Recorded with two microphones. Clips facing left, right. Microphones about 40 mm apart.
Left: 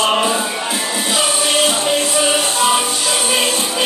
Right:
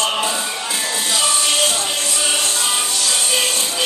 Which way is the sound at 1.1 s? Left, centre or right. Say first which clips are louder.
Left 3 dB; centre.